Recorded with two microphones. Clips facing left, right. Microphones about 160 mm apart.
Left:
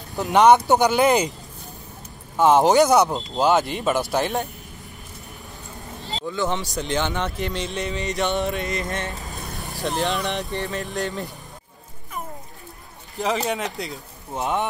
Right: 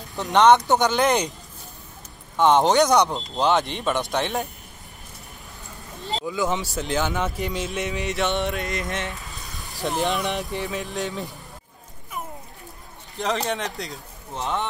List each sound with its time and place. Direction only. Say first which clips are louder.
0.2 s speech: left 1 dB; 5° left (ahead or behind)
2.3 s speech: left 2 dB; 5° left (ahead or behind)
6.2 s speech: left 1 dB; 5° right (ahead or behind)
9.1 s vehicle: left 4 dB; 40° left (ahead or behind)
10.1 s speech: even; centre (ahead or behind)
13.2 s speech: left 2 dB; 5° left (ahead or behind)
14.3 s speech: left 3 dB; 15° left (ahead or behind)